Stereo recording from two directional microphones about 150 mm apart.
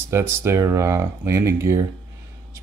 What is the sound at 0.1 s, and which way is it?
Speech, 15° right (ahead or behind).